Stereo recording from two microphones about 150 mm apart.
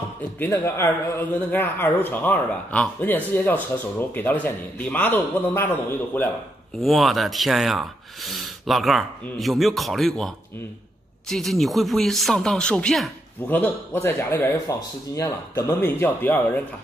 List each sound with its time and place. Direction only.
0.4 s speech: 15° left (ahead or behind)
6.8 s speech: centre (ahead or behind)
13.5 s speech: 15° left (ahead or behind)